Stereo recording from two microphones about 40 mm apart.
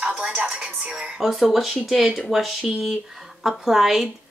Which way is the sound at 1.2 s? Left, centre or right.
Centre.